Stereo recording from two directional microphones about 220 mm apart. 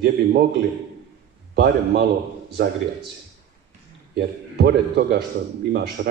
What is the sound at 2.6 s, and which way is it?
Speech, 45° right (ahead or behind).